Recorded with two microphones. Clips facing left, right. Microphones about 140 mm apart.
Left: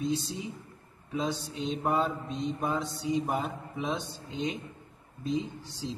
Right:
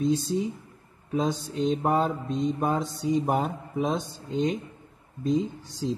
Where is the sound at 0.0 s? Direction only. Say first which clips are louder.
Right 7 dB; 45° right (ahead or behind).